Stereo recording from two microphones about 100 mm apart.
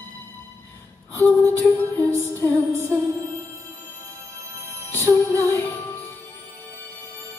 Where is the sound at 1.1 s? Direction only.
20° left (ahead or behind).